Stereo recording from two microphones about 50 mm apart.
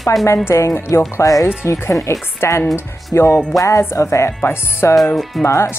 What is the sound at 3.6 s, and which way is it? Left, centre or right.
Speech, left.